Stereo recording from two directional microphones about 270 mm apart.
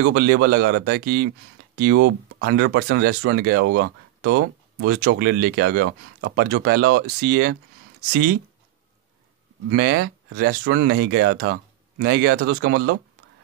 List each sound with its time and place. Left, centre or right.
0.0 s speech: right
2.0 s speech: right
2.4 s speech: right
9.7 s speech: right